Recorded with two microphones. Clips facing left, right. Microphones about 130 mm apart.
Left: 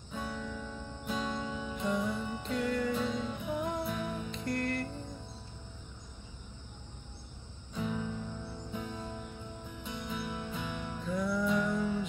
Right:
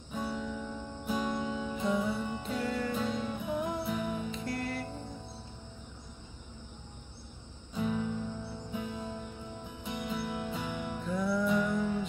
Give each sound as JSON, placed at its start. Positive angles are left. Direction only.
{"t": 0.1, "sound": "music", "side_deg": -10}
{"t": 1.6, "sound": "music", "side_deg": -5}
{"t": 7.7, "sound": "music", "side_deg": -10}
{"t": 11.1, "sound": "music", "side_deg": 0}